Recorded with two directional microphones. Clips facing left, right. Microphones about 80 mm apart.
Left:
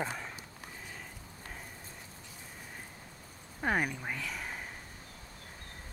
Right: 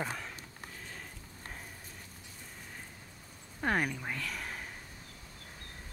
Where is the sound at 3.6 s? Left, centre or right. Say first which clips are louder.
Even; centre.